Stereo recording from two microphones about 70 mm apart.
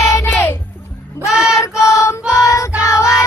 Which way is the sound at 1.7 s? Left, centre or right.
Left.